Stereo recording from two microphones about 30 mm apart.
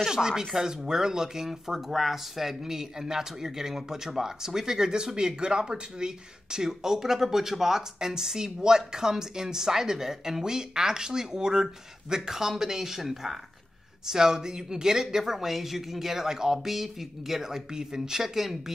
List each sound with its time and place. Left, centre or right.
0.0 s speech: centre
14.0 s speech: centre
15.3 s speech: centre
16.5 s speech: centre